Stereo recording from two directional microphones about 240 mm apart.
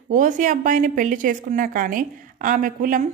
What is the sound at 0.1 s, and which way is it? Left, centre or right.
A woman's voice, right.